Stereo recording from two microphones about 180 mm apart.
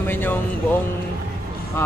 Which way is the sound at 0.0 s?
10° left (ahead or behind).